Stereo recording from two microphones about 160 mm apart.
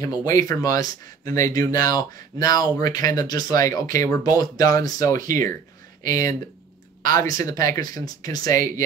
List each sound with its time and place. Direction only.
0.0 s speech: 25° left (ahead or behind)
7.0 s a sound: 55° right (ahead or behind)
7.2 s speech: 20° left (ahead or behind)